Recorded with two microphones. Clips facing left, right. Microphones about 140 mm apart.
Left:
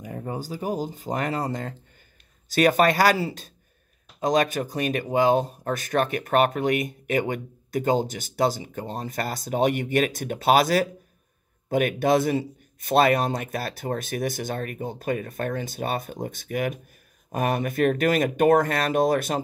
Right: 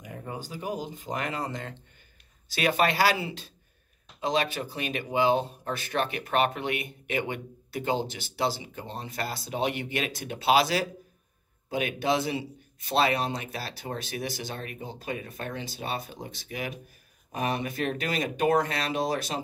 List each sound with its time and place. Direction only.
0.0 s speech: 35° left (ahead or behind); by 19.4 s 50° left (ahead or behind)